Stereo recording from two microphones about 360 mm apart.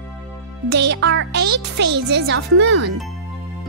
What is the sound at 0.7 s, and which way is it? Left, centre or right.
A child's voice, right.